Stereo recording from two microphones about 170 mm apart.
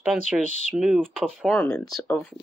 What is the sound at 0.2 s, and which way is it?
Speech, 45° left (ahead or behind).